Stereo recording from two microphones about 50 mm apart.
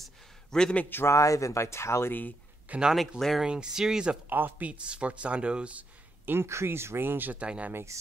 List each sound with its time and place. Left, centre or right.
0.5 s a man's voice: centre
1.0 s speech: left
3.0 s speech: centre
3.4 s speech: centre
4.3 s speech: right
4.6 s speech: right
6.2 s speech: right
7.3 s speech: right
7.9 s speech: right